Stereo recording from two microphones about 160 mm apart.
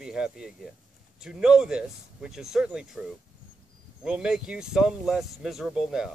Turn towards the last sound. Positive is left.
turn(degrees=-5)  # may be behind; listen again after turning